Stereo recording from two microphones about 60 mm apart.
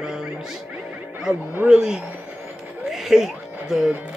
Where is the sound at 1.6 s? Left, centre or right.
Centre.